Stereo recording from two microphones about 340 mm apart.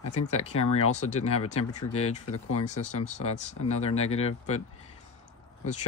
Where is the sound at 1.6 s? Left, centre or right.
Left.